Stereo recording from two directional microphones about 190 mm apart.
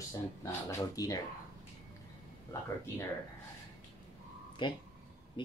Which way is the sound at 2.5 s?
15° left (ahead or behind).